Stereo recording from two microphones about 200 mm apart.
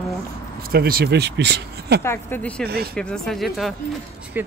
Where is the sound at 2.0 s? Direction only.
10° left (ahead or behind).